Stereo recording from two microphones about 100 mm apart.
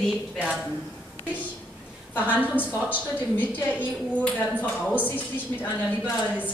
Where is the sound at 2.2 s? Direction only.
15° right (ahead or behind).